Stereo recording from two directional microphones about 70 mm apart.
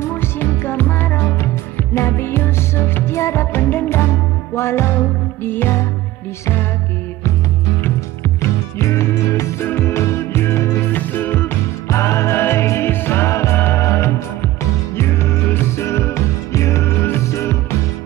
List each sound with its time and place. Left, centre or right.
0.0 s music: left
8.4 s music: left
10.9 s music: left
11.9 s music: left
13.8 s music: left